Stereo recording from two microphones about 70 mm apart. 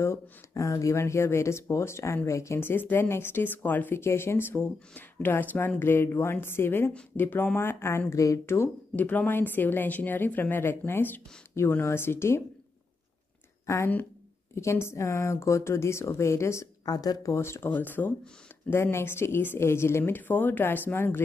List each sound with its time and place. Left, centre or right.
0.0 s speech: left
8.1 s a woman's voice: left
8.9 s a woman's voice: left
13.7 s a woman's voice: left
16.8 s speech: left
17.4 s speech: left
17.6 s a woman's voice: left